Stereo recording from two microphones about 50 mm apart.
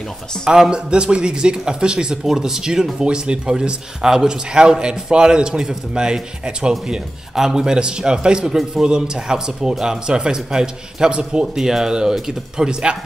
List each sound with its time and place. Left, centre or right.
0.5 s a man's voice: centre
11.5 s a man's voice: centre